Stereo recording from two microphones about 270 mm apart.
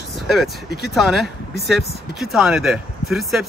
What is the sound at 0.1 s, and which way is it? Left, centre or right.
Vehicle, centre.